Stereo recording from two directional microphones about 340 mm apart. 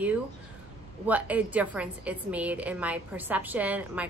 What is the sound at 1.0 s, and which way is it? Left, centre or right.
A woman's voice, centre.